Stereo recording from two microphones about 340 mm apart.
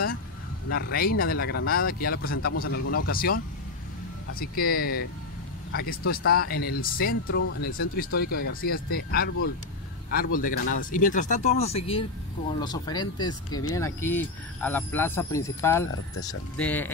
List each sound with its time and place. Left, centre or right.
0.7 s speech: left
2.3 s a man's voice: left
2.6 s speech: left; by 16.9 s centre